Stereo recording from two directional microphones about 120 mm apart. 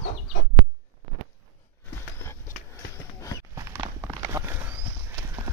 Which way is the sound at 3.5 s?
20° right (ahead or behind).